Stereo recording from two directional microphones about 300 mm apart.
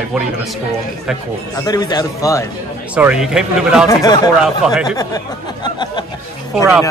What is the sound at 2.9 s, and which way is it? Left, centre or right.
Speech, centre.